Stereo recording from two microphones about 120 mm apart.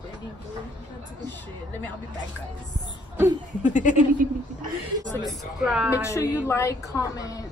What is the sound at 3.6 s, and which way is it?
Speech, 90° left.